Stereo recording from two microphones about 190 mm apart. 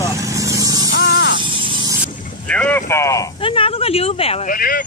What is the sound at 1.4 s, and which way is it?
Buzz, 25° right (ahead or behind).